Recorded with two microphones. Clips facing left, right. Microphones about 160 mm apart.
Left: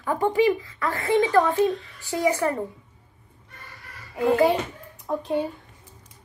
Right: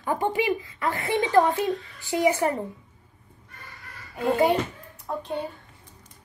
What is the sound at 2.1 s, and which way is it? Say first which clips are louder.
Speech: right 1 dB; 20° right (ahead or behind).